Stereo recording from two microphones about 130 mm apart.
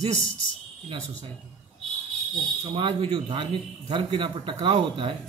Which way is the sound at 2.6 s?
40° right (ahead or behind).